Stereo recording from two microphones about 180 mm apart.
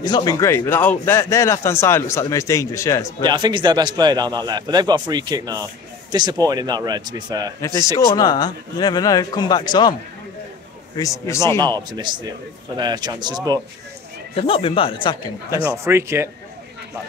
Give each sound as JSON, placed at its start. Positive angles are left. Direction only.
{"t": 0.0, "sound": "speech", "side_deg": 20}
{"t": 3.3, "sound": "speech", "side_deg": -25}
{"t": 8.1, "sound": "speech", "side_deg": 20}
{"t": 11.0, "sound": "speech", "side_deg": 15}
{"t": 11.6, "sound": "speech", "side_deg": -25}
{"t": 14.3, "sound": "speech", "side_deg": 30}
{"t": 15.8, "sound": "a man's voice", "side_deg": -15}